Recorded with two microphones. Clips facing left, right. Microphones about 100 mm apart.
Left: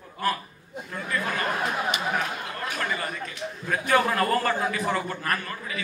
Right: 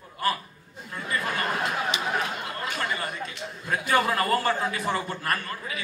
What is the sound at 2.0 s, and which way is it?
Chatter, centre (ahead or behind).